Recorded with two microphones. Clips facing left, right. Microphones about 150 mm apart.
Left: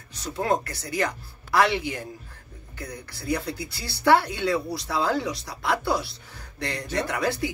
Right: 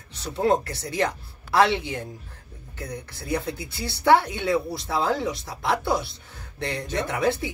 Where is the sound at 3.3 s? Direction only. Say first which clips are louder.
Even; 20° right (ahead or behind).